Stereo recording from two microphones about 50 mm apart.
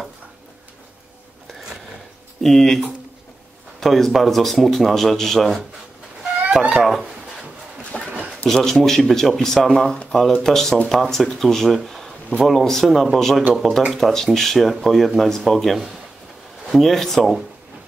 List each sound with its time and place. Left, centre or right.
2.4 s speech: centre
3.8 s speech: centre
6.7 s speech: centre
7.9 s a sound: centre
8.5 s speech: centre
13.5 s speech: centre